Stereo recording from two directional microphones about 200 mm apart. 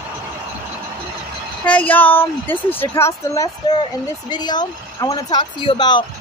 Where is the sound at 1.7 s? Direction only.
10° left (ahead or behind); by 6.0 s 25° left (ahead or behind).